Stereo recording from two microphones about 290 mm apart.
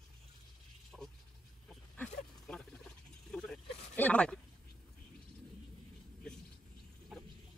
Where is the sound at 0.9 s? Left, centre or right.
Centre.